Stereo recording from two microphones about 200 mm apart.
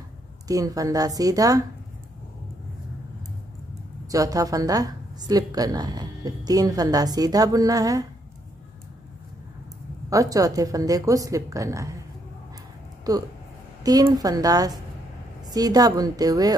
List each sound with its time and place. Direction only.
0.5 s a woman's voice: 20° right (ahead or behind)
4.1 s a woman's voice: 15° right (ahead or behind)
10.0 s a woman's voice: 15° right (ahead or behind)
13.1 s speech: 20° right (ahead or behind)